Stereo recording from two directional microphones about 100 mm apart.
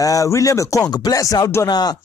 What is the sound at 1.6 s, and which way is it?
Speech, 45° left (ahead or behind).